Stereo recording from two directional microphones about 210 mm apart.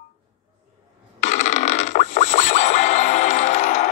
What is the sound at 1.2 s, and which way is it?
Music, 35° left (ahead or behind).